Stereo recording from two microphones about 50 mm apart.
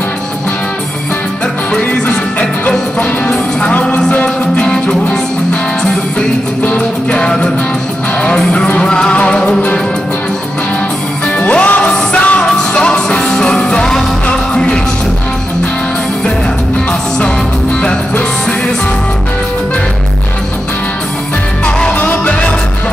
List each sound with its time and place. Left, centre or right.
3.0 s music: left
6.6 s music: left
7.2 s music: centre
8.7 s music: centre
11.3 s music: left
21.6 s music: centre
21.9 s music: left